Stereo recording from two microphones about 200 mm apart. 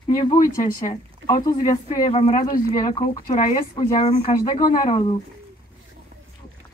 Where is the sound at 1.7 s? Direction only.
40° left (ahead or behind).